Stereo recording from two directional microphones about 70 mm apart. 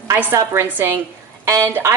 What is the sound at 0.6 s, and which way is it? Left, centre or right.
A woman's voice, right.